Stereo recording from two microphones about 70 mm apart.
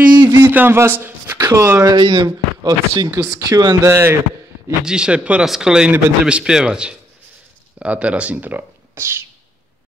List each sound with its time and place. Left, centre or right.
0.1 s a sound: right
0.4 s speech: right
1.9 s speech: right
2.2 s speech: right
3.8 s a man's voice: right
4.8 s a man's voice: centre; by 9.2 s right